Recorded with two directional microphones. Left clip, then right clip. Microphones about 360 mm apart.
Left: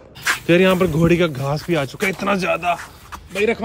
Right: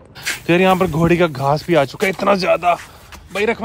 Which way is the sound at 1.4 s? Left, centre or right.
Centre.